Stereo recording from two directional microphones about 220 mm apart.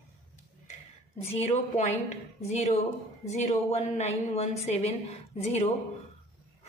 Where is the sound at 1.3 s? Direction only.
30° left (ahead or behind).